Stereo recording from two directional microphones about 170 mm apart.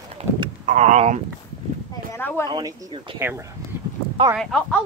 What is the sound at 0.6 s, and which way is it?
Speech, 45° right (ahead or behind).